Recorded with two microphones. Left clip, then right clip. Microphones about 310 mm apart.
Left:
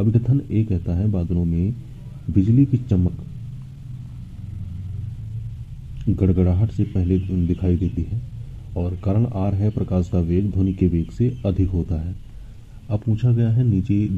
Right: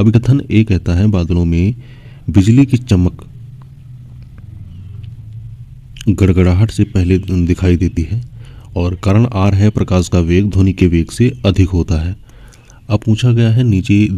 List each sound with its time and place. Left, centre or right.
0.0 s speech: right
5.9 s speech: right